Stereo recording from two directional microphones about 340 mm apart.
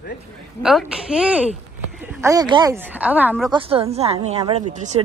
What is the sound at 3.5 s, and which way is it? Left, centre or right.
Speech, centre.